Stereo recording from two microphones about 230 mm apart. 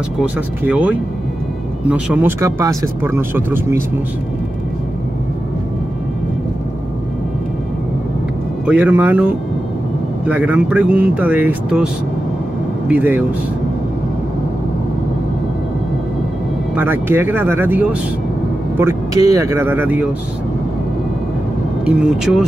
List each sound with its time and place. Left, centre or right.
0.2 s speech: centre
8.6 s speech: centre
16.7 s speech: centre
21.8 s speech: centre